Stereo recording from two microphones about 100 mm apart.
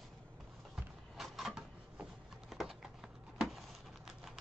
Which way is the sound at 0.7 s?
5° right (ahead or behind).